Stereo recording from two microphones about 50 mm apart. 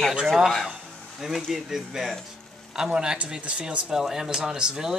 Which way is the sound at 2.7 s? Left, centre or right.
Centre.